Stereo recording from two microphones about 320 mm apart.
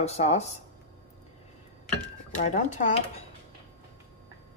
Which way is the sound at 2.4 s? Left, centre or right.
Left.